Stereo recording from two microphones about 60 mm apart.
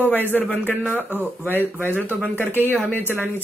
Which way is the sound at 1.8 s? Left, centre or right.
Right.